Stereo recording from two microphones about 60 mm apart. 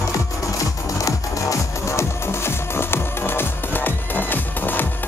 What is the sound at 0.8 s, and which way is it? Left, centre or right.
Music, left.